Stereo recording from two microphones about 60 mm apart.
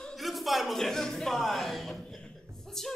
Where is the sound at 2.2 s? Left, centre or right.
Centre.